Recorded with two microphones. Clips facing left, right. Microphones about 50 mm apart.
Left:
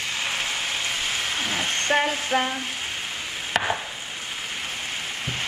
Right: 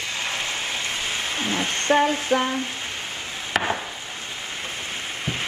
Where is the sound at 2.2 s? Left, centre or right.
Centre.